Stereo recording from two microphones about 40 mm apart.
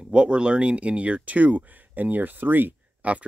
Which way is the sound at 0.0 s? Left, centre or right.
Right.